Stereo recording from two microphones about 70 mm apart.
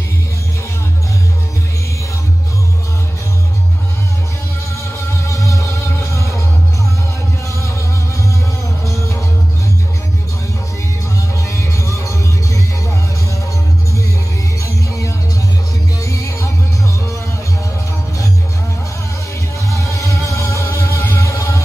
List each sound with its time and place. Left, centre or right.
5.2 s music: left
8.8 s music: left
11.4 s music: left
14.6 s music: left
19.7 s music: left